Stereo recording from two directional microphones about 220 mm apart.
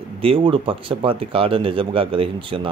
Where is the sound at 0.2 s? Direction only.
25° right (ahead or behind).